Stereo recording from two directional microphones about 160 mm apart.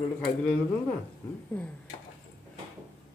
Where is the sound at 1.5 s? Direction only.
5° left (ahead or behind).